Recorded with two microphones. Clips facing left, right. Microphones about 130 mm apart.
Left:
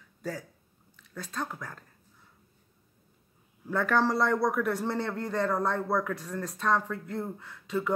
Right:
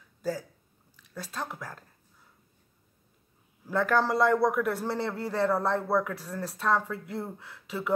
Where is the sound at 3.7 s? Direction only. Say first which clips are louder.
Right 1 dB; centre (ahead or behind).